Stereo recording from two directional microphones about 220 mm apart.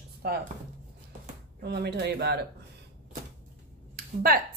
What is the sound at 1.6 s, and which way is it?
Speech, 50° right (ahead or behind).